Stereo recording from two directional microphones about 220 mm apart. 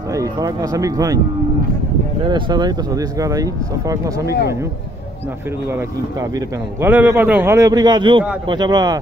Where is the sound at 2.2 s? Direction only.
20° right (ahead or behind).